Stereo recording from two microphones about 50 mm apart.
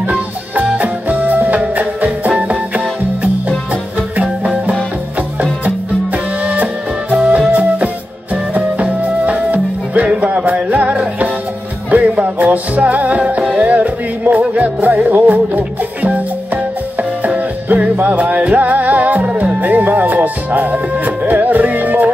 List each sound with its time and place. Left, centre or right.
0.6 s music: right
6.4 s music: right
7.2 s music: centre
8.5 s music: right
17.2 s music: right